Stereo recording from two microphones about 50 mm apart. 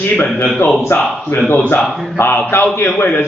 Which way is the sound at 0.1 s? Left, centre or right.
Left.